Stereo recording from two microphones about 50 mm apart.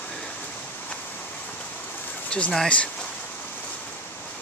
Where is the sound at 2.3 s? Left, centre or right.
Left.